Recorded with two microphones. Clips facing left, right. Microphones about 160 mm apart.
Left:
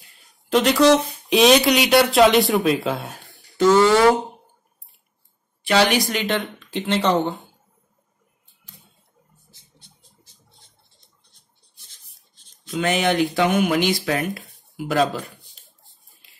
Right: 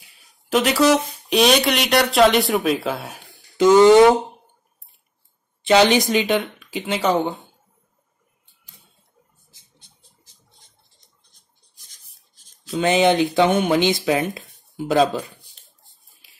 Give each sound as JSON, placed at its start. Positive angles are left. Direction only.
{"t": 0.0, "sound": "speech", "side_deg": -5}
{"t": 3.3, "sound": "a sound", "side_deg": -15}
{"t": 5.6, "sound": "speech", "side_deg": -20}
{"t": 12.6, "sound": "speech", "side_deg": -25}